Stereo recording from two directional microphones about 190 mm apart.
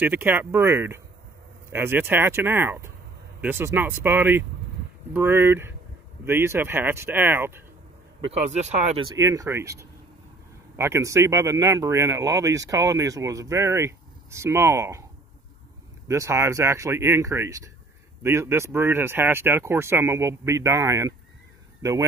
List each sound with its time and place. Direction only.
0.0 s speech: 10° right (ahead or behind)
8.3 s speech: 35° right (ahead or behind)
9.0 s speech: 20° right (ahead or behind)
16.1 s speech: 15° right (ahead or behind)